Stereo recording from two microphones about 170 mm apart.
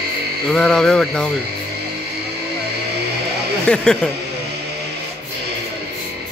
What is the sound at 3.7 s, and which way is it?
Speech, 5° left (ahead or behind).